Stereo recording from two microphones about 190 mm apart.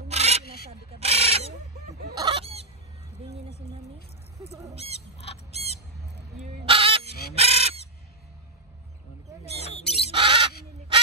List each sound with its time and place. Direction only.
0.1 s a sound: 35° right (ahead or behind)
2.1 s chicken: 25° right (ahead or behind)
4.5 s speech: 15° right (ahead or behind)
4.7 s bird: 35° right (ahead or behind)
6.6 s crow: 30° right (ahead or behind)
9.4 s bird: 35° left (ahead or behind)
10.1 s crow: 25° right (ahead or behind)